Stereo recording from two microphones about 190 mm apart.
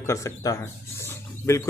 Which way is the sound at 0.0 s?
15° left (ahead or behind).